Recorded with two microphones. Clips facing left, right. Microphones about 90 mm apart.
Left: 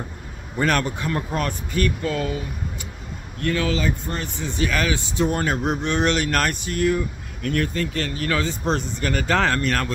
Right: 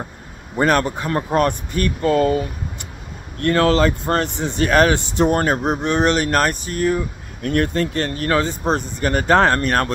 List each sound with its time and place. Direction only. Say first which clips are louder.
0.6 s speech: right 5 dB; 35° right (ahead or behind)
1.3 s a man's voice: right 7 dB; 50° right (ahead or behind)
5.4 s speech: right 4 dB; 45° right (ahead or behind)